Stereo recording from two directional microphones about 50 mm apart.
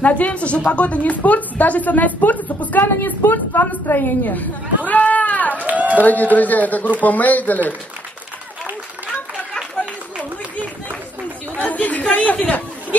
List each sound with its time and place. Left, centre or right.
0.0 s a woman's voice: left
5.7 s run: right
6.3 s a woman's voice: left
11.5 s chatter: left
12.2 s speech: left